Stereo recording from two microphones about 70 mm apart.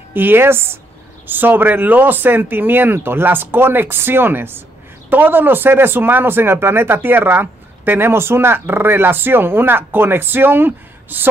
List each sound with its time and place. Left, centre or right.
0.1 s speech: right